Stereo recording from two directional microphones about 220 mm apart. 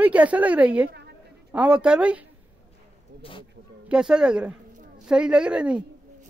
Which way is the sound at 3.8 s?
5° right (ahead or behind).